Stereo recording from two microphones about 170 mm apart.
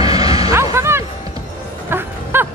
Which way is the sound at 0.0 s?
20° right (ahead or behind).